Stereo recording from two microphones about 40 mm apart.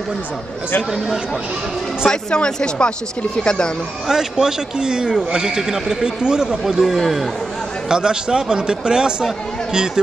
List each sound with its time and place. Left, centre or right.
2.0 s speech: left
4.1 s speech: centre
6.5 s a man's voice: centre
7.9 s speech: centre